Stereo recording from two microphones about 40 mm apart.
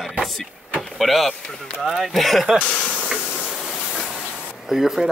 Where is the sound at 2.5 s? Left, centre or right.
Right.